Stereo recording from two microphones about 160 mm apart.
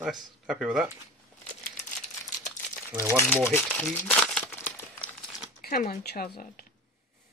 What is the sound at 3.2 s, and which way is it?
Speech, 15° left (ahead or behind).